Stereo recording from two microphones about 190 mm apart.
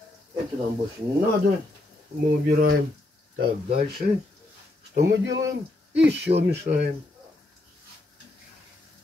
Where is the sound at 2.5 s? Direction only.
50° right (ahead or behind).